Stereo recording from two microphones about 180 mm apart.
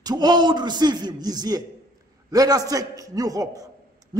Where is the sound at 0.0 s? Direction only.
25° right (ahead or behind).